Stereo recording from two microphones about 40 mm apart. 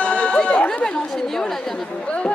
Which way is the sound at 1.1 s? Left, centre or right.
Centre.